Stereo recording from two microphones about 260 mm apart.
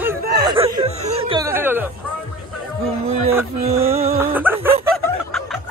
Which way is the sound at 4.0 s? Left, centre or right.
Centre.